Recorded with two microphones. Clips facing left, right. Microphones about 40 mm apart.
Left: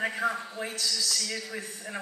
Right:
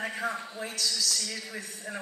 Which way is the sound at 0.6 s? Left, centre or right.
Left.